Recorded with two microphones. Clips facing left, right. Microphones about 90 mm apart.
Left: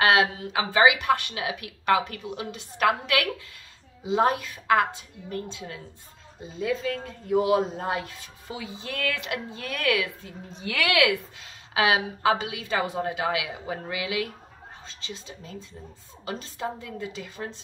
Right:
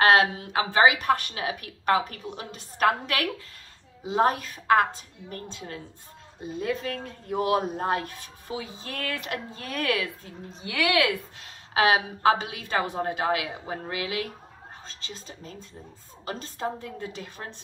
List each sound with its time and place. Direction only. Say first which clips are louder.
0.0 s a woman's voice: right 2 dB; 50° right (ahead or behind)
6.4 s a woman's voice: left 1 dB; 60° right (ahead or behind); by 10.0 s 35° right (ahead or behind)
10.6 s a woman's voice: left 1 dB; 25° right (ahead or behind)
11.4 s a woman's voice: right 2 dB; 50° right (ahead or behind)